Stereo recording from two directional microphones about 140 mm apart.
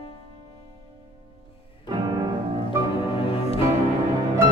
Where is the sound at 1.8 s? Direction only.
30° right (ahead or behind).